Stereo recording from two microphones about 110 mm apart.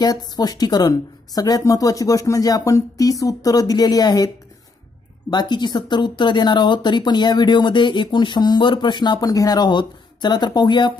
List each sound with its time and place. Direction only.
0.0 s speech: 40° left (ahead or behind)
5.3 s speech: 40° left (ahead or behind)